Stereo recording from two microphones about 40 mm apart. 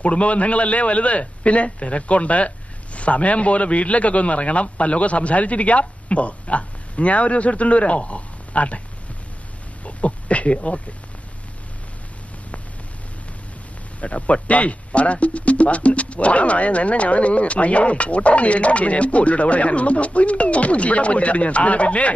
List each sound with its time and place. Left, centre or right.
0.0 s a man's voice: left
9.8 s speech: left
14.0 s a man's voice: left